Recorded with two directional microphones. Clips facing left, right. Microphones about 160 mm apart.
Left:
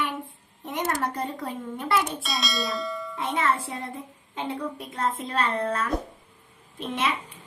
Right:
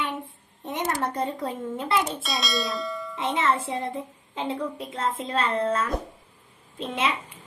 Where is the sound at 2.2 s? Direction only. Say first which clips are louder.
Right 1 dB; centre (ahead or behind).